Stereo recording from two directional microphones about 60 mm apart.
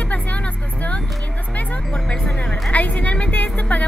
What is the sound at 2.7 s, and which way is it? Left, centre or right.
Speech, left.